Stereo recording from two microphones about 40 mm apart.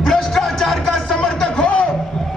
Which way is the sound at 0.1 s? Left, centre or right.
Centre.